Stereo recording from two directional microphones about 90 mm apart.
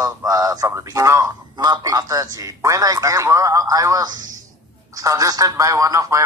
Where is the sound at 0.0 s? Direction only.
40° right (ahead or behind).